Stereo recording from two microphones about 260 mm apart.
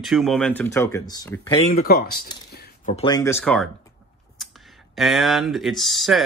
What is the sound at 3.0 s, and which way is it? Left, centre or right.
Speech, centre.